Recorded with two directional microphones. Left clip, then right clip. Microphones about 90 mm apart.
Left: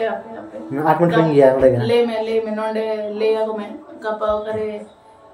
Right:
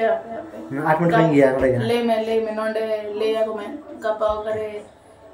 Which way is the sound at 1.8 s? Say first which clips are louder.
Left 3 dB; 25° right (ahead or behind).